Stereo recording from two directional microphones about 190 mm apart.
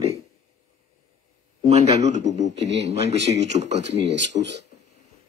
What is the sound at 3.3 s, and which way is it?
Speech, 65° right (ahead or behind).